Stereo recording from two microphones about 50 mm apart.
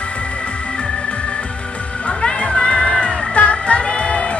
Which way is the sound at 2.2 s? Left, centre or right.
Centre.